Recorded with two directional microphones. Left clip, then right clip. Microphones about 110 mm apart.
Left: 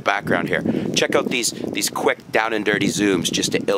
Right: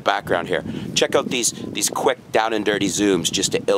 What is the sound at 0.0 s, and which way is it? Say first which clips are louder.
Speech: even; 5° right (ahead or behind).